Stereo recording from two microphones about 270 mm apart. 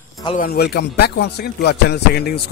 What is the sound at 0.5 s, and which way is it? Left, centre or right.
Speech, left.